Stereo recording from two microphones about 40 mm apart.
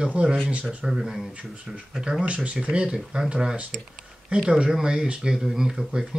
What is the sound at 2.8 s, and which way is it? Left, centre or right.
Speech, centre.